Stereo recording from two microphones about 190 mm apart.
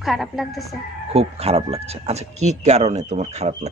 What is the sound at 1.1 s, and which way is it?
A man's voice, 35° right (ahead or behind).